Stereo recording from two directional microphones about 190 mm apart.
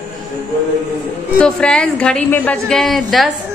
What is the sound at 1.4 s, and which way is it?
A woman's voice, 5° left (ahead or behind).